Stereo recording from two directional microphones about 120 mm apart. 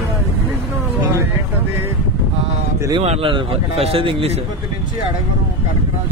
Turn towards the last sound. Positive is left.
turn(degrees=-50)  # may be behind; listen again after turning